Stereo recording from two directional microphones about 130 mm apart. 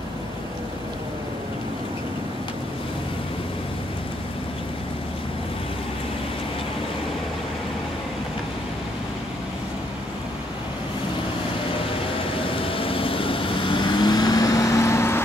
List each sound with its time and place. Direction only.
12.4 s vehicle: 45° left (ahead or behind); by 15.2 s 20° left (ahead or behind)